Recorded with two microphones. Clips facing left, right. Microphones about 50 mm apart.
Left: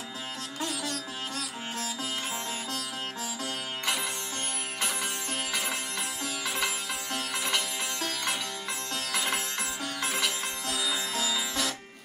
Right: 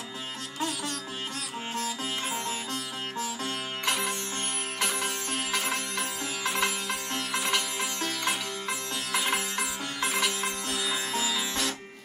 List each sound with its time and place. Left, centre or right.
4.7 s music: right
5.5 s sitar: right
7.4 s sitar: centre
10.7 s sitar: right